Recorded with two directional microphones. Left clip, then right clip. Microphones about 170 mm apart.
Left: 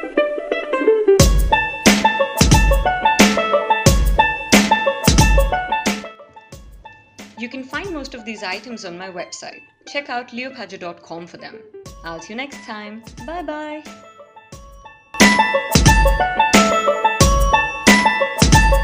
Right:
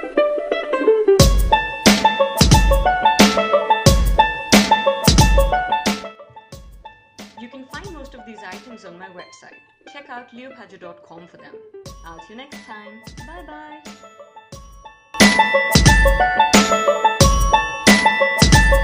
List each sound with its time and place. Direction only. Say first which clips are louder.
0.0 s music: right 1 dB; centre (ahead or behind)
7.9 s music: left 8 dB; 35° left (ahead or behind)
8.3 s speech: left 11 dB; 35° left (ahead or behind)
15.1 s music: even; centre (ahead or behind)